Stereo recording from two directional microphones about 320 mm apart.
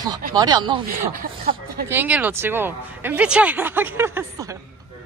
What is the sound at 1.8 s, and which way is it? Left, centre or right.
Speech, centre.